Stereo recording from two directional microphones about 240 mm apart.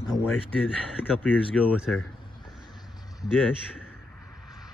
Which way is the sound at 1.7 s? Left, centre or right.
Centre.